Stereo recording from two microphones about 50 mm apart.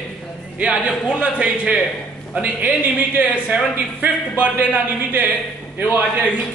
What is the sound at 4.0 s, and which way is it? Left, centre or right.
Speech, right.